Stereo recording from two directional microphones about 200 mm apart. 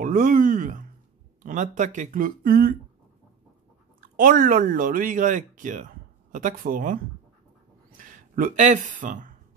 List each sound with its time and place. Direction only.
0.0 s a sound: 40° right (ahead or behind)
1.4 s speech: 40° right (ahead or behind)
4.2 s speech: 40° right (ahead or behind)
8.0 s speech: 45° right (ahead or behind)